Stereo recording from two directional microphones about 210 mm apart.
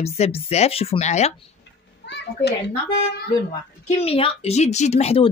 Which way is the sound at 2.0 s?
55° left (ahead or behind).